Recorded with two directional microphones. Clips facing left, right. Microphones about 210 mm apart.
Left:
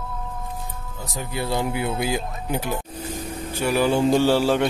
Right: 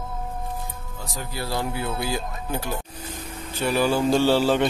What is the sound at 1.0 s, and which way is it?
Speech, 20° left (ahead or behind).